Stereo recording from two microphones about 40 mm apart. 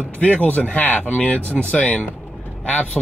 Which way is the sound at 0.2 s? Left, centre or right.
Left.